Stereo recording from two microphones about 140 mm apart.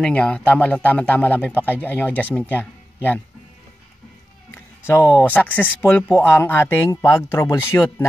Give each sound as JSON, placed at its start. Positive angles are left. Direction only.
{"t": 0.0, "sound": "a man's voice", "side_deg": 10}
{"t": 4.8, "sound": "a man's voice", "side_deg": 15}